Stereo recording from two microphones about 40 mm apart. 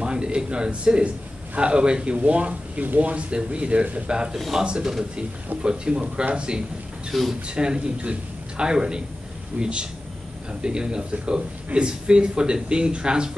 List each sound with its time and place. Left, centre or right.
0.0 s a sound: right
1.5 s speech: right
5.6 s speech: right
7.1 s speech: centre
7.4 s speech: right